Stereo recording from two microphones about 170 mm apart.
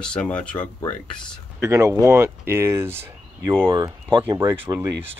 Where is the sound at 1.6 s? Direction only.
15° right (ahead or behind).